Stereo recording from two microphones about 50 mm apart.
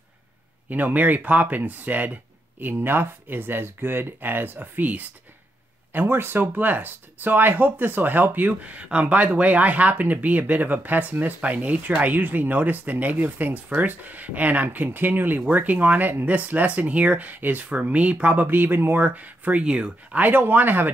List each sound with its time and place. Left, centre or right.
0.7 s speech: right
2.7 s speech: right
5.9 s speech: right
19.0 s speech: right
19.6 s speech: right
20.2 s speech: right